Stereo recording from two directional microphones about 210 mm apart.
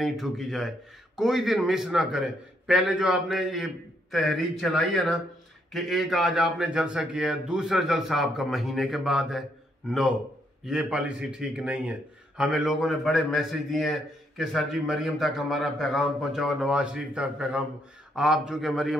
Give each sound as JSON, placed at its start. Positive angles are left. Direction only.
{"t": 0.0, "sound": "a man's voice", "side_deg": 0}